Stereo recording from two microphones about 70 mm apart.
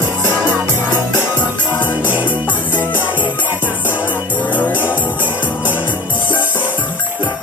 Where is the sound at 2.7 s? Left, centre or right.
Left.